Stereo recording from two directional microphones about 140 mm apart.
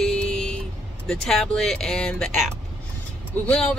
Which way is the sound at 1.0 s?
5° left (ahead or behind).